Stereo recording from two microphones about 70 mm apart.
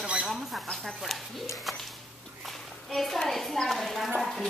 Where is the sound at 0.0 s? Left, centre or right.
Centre.